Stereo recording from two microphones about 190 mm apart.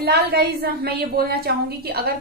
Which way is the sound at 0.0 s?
55° right (ahead or behind).